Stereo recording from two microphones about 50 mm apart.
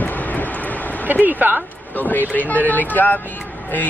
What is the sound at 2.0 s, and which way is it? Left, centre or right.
Speech, left.